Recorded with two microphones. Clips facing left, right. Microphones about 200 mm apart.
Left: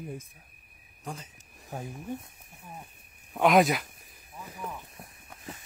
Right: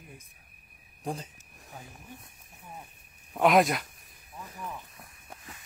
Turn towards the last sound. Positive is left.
turn(degrees=30)  # may be behind; listen again after turning